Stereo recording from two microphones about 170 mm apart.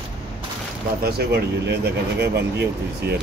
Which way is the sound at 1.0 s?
70° right (ahead or behind).